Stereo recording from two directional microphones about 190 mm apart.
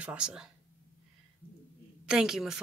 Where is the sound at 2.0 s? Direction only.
5° right (ahead or behind).